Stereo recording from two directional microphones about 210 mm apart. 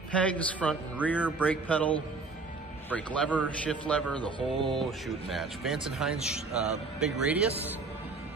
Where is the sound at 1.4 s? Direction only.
5° left (ahead or behind).